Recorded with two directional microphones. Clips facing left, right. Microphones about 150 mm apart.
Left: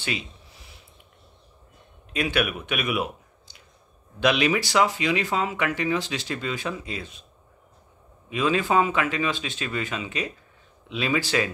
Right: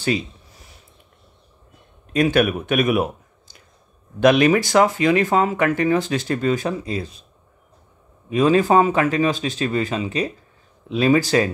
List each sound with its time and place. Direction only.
0.0 s a sound: 40° right (ahead or behind)
2.1 s speech: 40° right (ahead or behind)
8.3 s speech: 40° right (ahead or behind)